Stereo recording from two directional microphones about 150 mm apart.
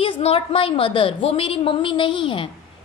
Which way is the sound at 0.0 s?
40° left (ahead or behind).